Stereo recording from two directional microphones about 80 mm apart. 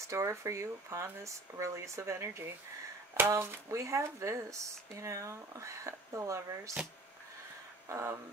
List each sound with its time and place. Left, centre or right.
0.1 s speech: right
7.9 s speech: right